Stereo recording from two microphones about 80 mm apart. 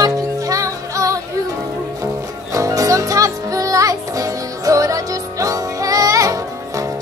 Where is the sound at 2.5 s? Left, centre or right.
Right.